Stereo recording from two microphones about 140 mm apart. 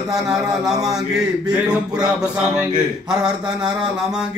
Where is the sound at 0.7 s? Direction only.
25° right (ahead or behind).